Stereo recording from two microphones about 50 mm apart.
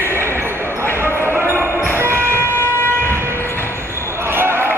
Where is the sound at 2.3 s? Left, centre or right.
Left.